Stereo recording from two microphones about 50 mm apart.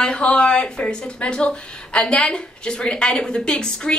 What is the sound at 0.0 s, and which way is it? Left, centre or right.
A woman's voice, centre.